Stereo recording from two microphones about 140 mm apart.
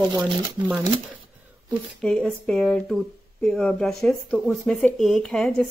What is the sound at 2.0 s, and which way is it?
Speech, 10° left (ahead or behind).